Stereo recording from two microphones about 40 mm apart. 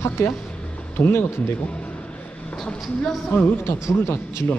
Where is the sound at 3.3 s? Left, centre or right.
Left.